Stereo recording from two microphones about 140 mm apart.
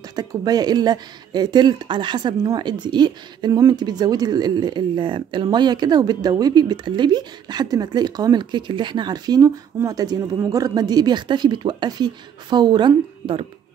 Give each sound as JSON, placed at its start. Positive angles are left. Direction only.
{"t": 0.1, "sound": "speech", "side_deg": -30}